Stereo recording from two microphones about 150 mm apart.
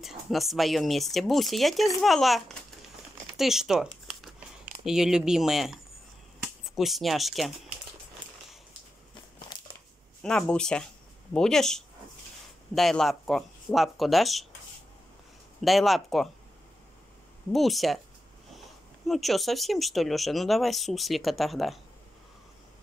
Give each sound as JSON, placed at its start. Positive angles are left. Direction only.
{"t": 0.0, "sound": "speech", "side_deg": 0}
{"t": 3.3, "sound": "a sound", "side_deg": 0}
{"t": 4.8, "sound": "speech", "side_deg": -5}
{"t": 9.5, "sound": "a sound", "side_deg": 25}
{"t": 10.2, "sound": "speech", "side_deg": 5}
{"t": 15.6, "sound": "speech", "side_deg": 0}
{"t": 17.5, "sound": "speech", "side_deg": 0}
{"t": 19.0, "sound": "speech", "side_deg": 0}